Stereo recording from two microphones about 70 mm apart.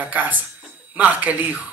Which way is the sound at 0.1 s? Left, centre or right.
Right.